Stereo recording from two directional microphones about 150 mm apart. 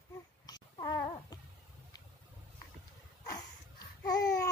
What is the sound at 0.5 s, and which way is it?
Babbling, 25° left (ahead or behind).